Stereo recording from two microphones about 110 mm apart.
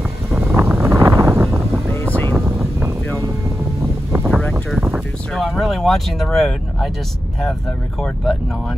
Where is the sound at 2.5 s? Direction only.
25° right (ahead or behind).